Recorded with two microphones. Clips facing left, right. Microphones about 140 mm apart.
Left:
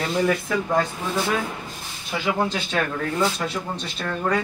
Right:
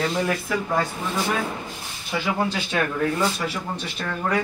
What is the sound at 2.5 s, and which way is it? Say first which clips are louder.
Speech: even; 10° right (ahead or behind).